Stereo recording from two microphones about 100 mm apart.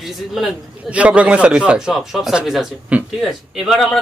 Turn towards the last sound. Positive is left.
turn(degrees=0)  # may be behind; listen again after turning